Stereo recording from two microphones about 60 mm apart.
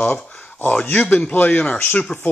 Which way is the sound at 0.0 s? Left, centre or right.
Left.